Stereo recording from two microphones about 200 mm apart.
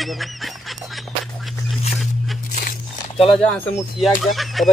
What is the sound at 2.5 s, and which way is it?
Tearing, 45° left (ahead or behind).